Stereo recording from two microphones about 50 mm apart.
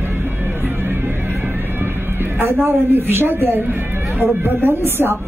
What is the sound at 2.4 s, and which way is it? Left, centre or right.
Speech, right.